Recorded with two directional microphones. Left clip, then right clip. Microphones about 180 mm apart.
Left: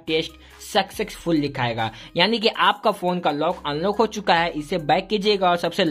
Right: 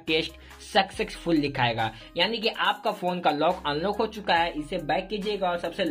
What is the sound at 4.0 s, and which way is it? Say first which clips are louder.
Speech: left 6 dB; 30° left (ahead or behind).